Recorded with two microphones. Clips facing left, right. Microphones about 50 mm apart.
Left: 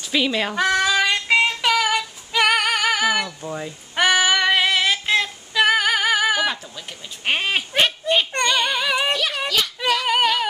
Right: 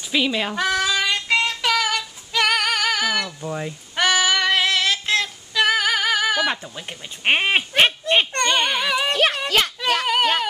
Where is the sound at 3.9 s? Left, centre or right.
Centre.